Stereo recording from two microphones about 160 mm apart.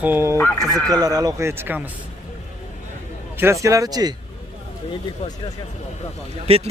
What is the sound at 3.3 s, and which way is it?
Speech, 15° right (ahead or behind).